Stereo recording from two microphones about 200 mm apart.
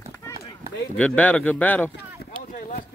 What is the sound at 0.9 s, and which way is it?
Speech, 5° left (ahead or behind).